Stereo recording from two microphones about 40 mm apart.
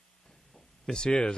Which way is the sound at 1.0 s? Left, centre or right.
Left.